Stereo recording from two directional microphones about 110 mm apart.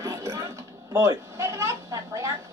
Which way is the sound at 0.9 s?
25° right (ahead or behind).